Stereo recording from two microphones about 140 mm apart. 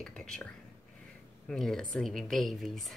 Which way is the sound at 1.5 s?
5° left (ahead or behind).